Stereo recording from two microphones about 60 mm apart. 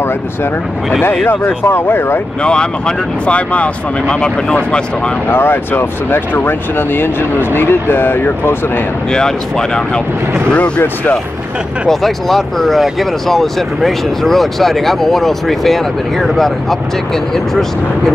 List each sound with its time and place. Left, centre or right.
1.2 s speech: left
2.4 s speech: centre
5.3 s speech: left
9.1 s speech: centre
11.9 s speech: centre